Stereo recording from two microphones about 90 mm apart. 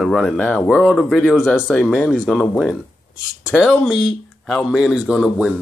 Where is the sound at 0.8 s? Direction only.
5° left (ahead or behind).